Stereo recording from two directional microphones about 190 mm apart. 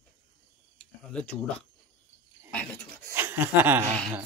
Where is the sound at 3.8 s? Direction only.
5° left (ahead or behind).